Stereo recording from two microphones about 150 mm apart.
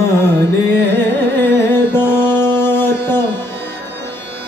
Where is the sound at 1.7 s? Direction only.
15° left (ahead or behind).